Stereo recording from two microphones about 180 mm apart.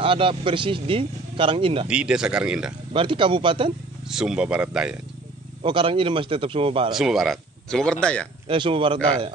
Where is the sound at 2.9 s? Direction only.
30° right (ahead or behind).